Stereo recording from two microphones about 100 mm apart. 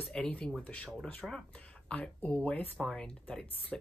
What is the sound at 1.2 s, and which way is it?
Speech, 5° right (ahead or behind).